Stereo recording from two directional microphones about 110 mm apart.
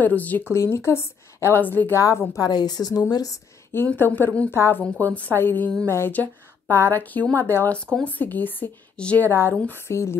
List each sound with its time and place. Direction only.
0.0 s a woman's voice: 15° left (ahead or behind)
2.0 s a woman's voice: 30° left (ahead or behind)
3.7 s a woman's voice: 20° left (ahead or behind)
9.3 s a woman's voice: 25° left (ahead or behind)